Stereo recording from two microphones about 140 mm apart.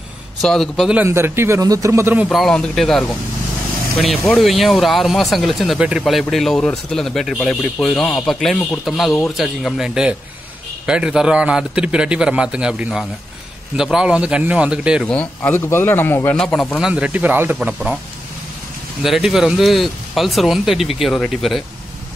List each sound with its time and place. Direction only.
0.4 s speech: centre (ahead or behind)
0.9 s a man's voice: 15° right (ahead or behind)
2.2 s a man's voice: 5° left (ahead or behind)
15.0 s speech: 10° left (ahead or behind)
16.8 s a man's voice: 10° right (ahead or behind)
19.0 s speech: 5° right (ahead or behind)